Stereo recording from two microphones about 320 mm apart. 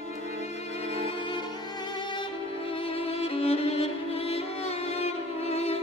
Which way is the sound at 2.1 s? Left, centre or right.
Centre.